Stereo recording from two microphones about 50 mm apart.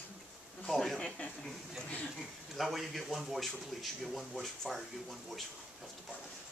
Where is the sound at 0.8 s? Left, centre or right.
Centre.